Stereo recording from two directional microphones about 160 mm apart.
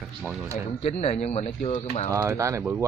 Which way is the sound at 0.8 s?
40° left (ahead or behind).